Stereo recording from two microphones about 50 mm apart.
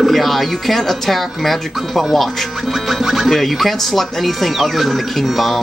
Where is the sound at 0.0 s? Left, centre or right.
Centre.